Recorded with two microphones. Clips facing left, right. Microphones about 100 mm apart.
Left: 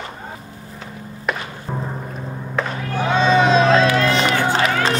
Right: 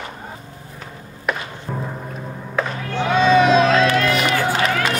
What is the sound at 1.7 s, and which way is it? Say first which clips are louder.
Music: even; 20° left (ahead or behind).